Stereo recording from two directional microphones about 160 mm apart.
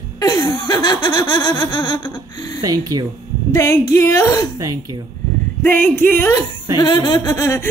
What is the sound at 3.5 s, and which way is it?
Speech, 15° left (ahead or behind).